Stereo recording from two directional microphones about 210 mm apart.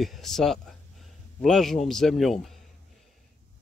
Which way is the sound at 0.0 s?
Centre (ahead or behind).